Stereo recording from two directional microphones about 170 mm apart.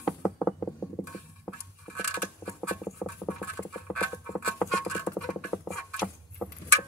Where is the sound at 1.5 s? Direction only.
5° left (ahead or behind).